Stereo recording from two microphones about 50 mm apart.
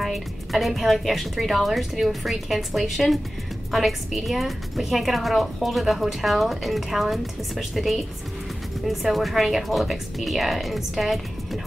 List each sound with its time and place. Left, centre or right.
0.0 s a woman's voice: centre